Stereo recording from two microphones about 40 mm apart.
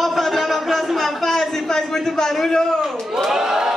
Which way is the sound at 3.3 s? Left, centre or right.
Centre.